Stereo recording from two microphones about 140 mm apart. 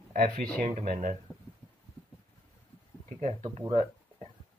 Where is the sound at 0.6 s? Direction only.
55° right (ahead or behind).